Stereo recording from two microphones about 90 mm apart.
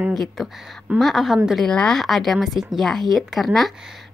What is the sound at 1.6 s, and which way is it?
A woman's voice, 10° left (ahead or behind).